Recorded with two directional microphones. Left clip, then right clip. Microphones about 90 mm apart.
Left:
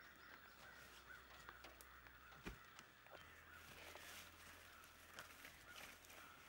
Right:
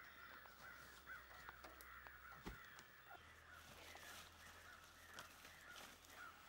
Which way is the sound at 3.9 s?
Centre (ahead or behind).